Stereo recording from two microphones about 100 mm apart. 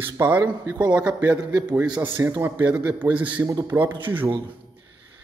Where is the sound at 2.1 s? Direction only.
25° right (ahead or behind).